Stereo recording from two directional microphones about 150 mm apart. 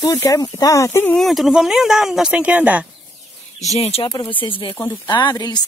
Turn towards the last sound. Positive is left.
turn(degrees=30)  # may be behind; listen again after turning